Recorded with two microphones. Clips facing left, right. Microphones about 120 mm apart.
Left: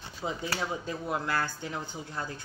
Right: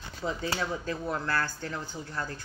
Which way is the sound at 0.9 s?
15° left (ahead or behind).